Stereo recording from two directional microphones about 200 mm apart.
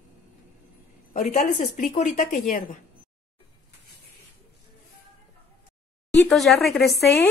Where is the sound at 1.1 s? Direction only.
40° left (ahead or behind).